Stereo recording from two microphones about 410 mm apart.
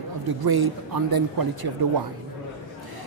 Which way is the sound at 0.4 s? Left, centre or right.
Right.